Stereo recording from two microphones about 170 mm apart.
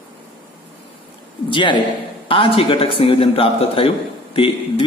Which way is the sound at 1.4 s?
30° left (ahead or behind).